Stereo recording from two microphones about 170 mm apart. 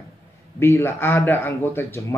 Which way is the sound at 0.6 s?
15° left (ahead or behind).